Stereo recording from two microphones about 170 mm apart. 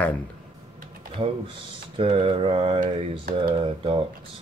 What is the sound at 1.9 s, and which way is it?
Mantra, 30° right (ahead or behind).